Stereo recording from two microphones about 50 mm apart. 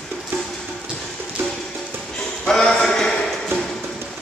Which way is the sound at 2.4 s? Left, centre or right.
Centre.